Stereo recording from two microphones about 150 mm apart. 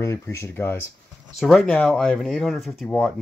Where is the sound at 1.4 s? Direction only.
Centre (ahead or behind).